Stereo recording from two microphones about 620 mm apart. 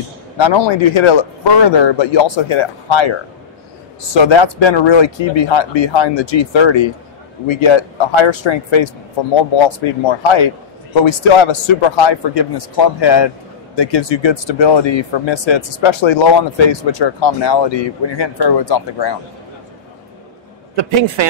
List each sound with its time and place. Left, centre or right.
0.4 s speech: left
20.7 s a man's voice: right